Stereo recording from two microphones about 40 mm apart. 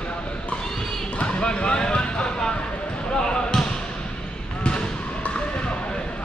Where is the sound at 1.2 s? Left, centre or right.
Left.